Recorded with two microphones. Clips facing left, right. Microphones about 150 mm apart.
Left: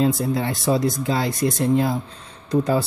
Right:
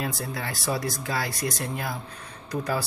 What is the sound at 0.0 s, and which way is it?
Speech, 25° left (ahead or behind).